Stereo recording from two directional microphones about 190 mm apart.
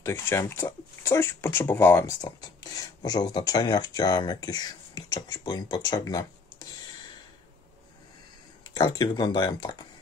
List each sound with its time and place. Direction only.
0.0 s speech: 15° left (ahead or behind)
8.7 s speech: 20° left (ahead or behind)